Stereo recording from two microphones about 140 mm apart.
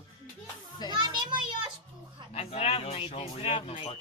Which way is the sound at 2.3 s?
50° left (ahead or behind).